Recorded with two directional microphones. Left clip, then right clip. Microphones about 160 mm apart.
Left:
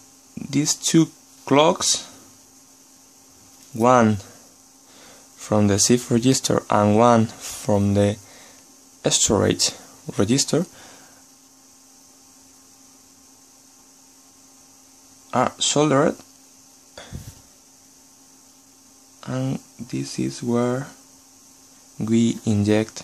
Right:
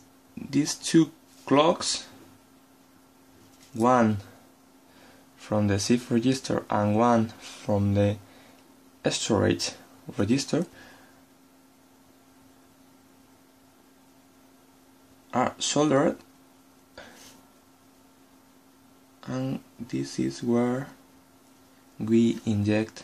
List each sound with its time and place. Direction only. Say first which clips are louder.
0.5 s speech: left 4 dB; 35° left (ahead or behind)
3.7 s speech: left 6 dB; 30° left (ahead or behind)
5.4 s speech: left 7 dB; 30° left (ahead or behind)
15.3 s speech: left 5 dB; 30° left (ahead or behind)
19.2 s speech: left 4 dB; 40° left (ahead or behind)
21.9 s speech: left 2 dB; 30° left (ahead or behind)